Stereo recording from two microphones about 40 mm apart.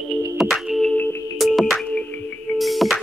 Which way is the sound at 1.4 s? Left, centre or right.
Centre.